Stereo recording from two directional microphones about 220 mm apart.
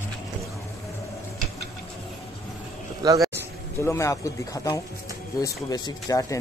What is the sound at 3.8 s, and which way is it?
Speech, 15° left (ahead or behind).